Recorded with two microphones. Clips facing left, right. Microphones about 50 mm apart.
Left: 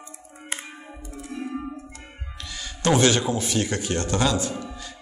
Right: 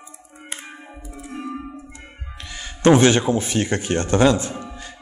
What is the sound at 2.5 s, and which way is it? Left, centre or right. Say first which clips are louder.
Speech: right 7 dB; right.